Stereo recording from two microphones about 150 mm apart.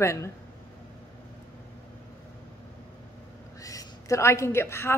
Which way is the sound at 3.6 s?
20° left (ahead or behind).